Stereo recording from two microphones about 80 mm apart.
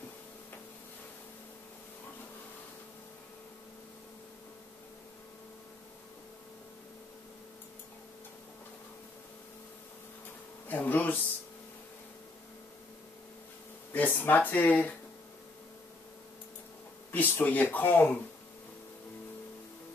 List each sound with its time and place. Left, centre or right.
10.7 s speech: left
13.9 s speech: left
17.1 s speech: left